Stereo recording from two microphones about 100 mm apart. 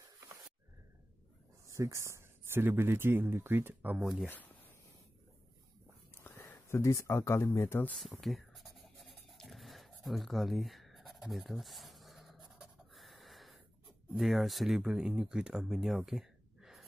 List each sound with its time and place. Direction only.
1.7 s speech: 30° right (ahead or behind)
4.0 s speech: 5° right (ahead or behind)
6.1 s speech: 20° left (ahead or behind)
8.2 s writing: centre (ahead or behind)
14.1 s speech: centre (ahead or behind)